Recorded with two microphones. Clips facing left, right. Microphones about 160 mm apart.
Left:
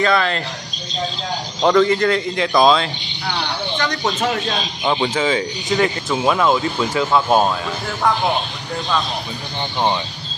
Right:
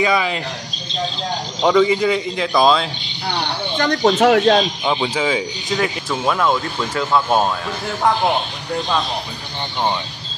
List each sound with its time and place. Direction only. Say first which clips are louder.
0.0 s speech: left 1 dB; 10° right (ahead or behind)
1.6 s speech: even; 5° right (ahead or behind)
3.7 s speech: right 6 dB; 45° right (ahead or behind)
4.0 s speech: right 11 dB; 65° right (ahead or behind)
4.8 s speech: left 1 dB; centre (ahead or behind)